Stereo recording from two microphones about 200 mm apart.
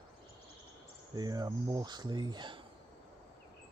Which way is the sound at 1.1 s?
20° right (ahead or behind).